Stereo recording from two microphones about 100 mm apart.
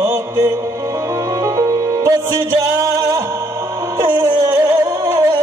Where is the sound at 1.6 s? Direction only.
35° right (ahead or behind).